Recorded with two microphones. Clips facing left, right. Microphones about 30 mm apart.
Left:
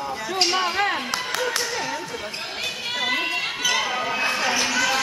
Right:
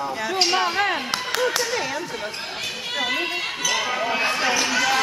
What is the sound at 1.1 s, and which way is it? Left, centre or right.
Clapping, centre.